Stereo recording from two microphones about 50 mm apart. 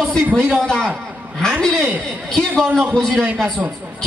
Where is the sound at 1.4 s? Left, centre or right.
Centre.